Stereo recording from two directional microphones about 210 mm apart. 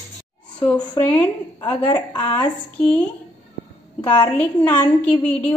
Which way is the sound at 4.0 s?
20° left (ahead or behind).